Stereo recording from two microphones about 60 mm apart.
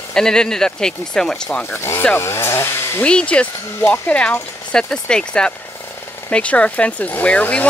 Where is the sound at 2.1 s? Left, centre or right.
Left.